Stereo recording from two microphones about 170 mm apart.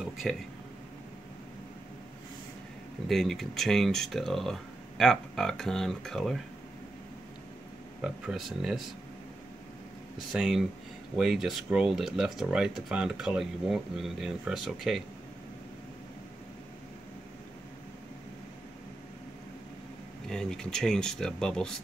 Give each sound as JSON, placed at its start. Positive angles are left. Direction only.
{"t": 0.0, "sound": "speech", "side_deg": 0}
{"t": 3.1, "sound": "speech", "side_deg": 0}
{"t": 8.0, "sound": "speech", "side_deg": 0}
{"t": 10.3, "sound": "speech", "side_deg": 0}
{"t": 20.2, "sound": "speech", "side_deg": 0}